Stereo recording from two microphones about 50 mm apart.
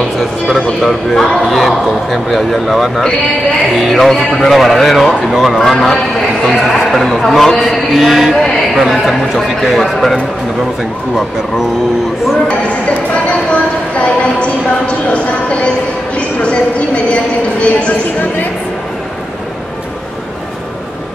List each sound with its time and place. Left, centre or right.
0.2 s a man's voice: centre
5.6 s a man's voice: centre
8.4 s a sound: centre
8.8 s a man's voice: centre
12.4 s a woman's voice: left